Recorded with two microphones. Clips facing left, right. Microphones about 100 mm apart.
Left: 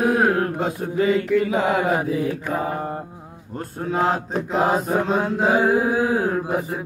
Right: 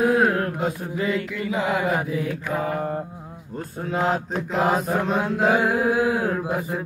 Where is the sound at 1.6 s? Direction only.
45° left (ahead or behind).